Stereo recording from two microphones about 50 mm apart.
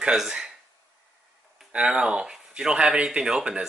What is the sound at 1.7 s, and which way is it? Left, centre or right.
Speech, centre.